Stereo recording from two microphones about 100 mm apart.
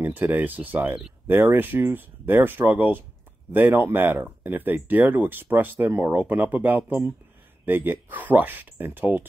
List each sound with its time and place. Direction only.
0.0 s speech: 20° right (ahead or behind)